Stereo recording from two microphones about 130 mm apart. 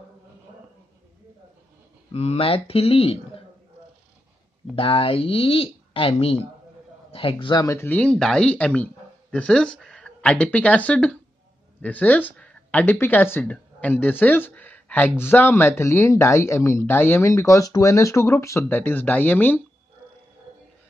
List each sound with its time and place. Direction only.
2.1 s speech: 50° left (ahead or behind)
4.7 s speech: 45° left (ahead or behind)
7.6 s speech: 20° left (ahead or behind)